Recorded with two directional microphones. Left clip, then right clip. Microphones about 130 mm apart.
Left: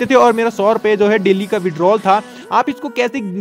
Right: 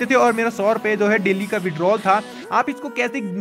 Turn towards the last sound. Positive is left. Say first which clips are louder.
# left 5 dB
turn(degrees=35)  # may be behind; listen again after turning